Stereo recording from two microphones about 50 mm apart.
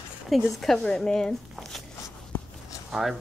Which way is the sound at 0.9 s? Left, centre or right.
Centre.